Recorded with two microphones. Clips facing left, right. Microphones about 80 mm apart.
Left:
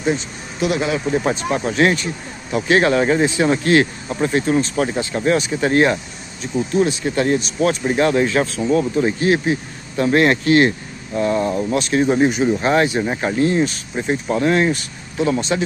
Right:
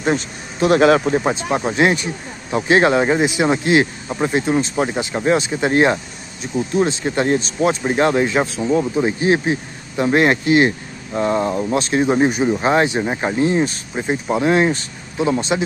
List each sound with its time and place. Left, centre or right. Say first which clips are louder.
0.0 s speech: right 1 dB; right
0.7 s speech: right 8 dB; right
1.1 s speech: right 1 dB; right
11.1 s speech: even; right